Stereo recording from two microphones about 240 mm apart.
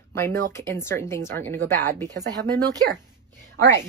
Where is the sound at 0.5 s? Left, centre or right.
Centre.